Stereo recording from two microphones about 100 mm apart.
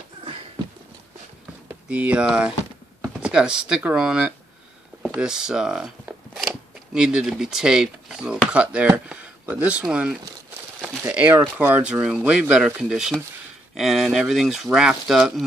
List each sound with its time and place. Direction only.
1.9 s speech: 15° right (ahead or behind)
6.3 s mechanisms: 5° right (ahead or behind)
8.5 s speech: 10° right (ahead or behind)